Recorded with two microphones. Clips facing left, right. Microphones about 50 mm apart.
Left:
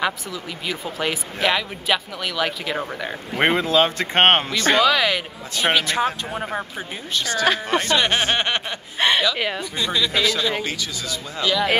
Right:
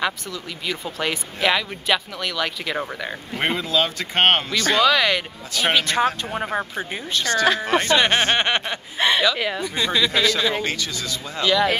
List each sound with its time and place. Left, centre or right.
0.0 s speech: centre
3.3 s speech: left
3.6 s speech: left
4.7 s speech: centre
6.3 s speech: centre
7.2 s speech: centre